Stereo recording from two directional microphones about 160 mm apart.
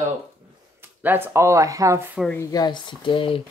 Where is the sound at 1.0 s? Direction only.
10° right (ahead or behind).